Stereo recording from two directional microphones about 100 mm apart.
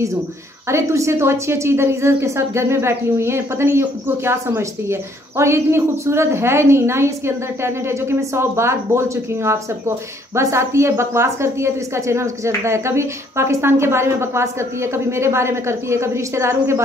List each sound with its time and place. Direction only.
0.7 s a woman's voice: 30° right (ahead or behind)